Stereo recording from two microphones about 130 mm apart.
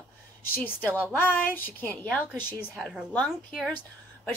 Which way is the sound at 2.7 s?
Centre (ahead or behind).